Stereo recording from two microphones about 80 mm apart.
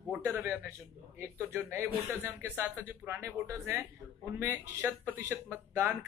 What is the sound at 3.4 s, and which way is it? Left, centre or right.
Speech, right.